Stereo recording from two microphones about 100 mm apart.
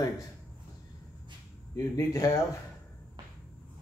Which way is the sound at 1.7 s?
35° left (ahead or behind).